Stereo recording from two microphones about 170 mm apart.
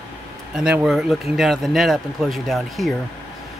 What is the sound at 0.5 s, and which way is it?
A man's voice, 5° right (ahead or behind).